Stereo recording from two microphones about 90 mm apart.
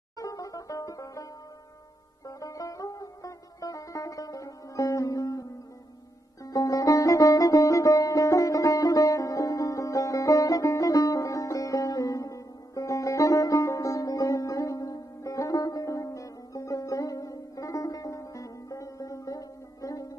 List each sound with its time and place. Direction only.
0.2 s banjo: 40° left (ahead or behind)
2.2 s music: 40° left (ahead or behind)